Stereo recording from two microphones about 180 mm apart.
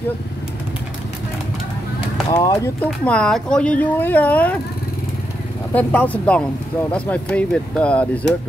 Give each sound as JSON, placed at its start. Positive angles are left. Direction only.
{"t": 2.3, "sound": "speech", "side_deg": 20}
{"t": 5.8, "sound": "speech", "side_deg": 10}